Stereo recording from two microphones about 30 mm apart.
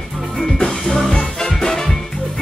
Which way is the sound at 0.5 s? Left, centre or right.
Left.